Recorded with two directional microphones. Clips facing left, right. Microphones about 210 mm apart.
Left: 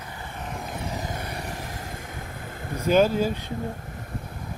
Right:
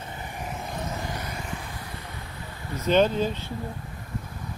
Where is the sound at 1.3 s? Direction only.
35° left (ahead or behind).